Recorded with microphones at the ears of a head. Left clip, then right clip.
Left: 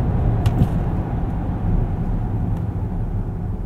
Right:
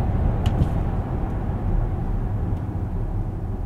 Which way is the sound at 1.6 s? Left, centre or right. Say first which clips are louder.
Left 3 dB; left.